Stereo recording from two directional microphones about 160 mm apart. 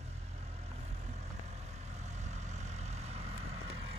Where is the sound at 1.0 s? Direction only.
45° right (ahead or behind).